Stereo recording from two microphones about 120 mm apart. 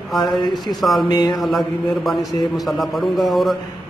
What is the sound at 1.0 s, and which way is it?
Speech, 35° left (ahead or behind).